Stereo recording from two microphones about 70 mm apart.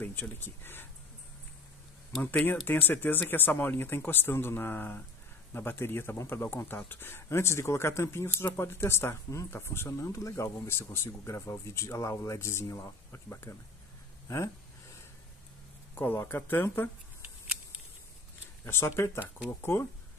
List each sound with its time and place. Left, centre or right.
0.0 s speech: left
2.6 s speech: left
15.9 s speech: left
18.7 s speech: left